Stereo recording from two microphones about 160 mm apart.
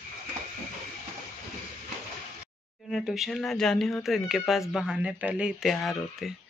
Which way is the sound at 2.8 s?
Centre (ahead or behind).